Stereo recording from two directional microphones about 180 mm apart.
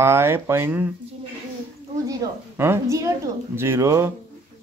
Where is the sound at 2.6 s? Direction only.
15° right (ahead or behind).